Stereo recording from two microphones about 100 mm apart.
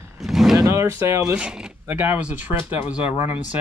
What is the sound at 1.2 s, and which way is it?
Speech, 10° right (ahead or behind).